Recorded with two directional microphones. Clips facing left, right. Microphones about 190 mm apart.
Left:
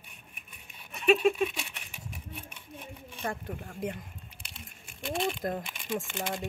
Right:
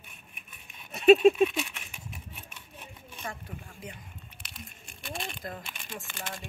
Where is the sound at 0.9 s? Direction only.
40° right (ahead or behind).